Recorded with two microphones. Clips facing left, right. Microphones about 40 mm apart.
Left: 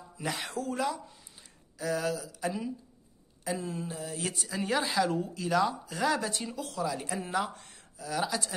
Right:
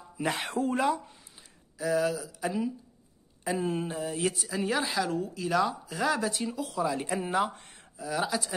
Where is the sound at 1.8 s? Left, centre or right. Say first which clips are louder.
Right 4 dB; centre.